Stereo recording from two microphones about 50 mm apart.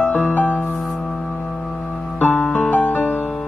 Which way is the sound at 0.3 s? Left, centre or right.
Left.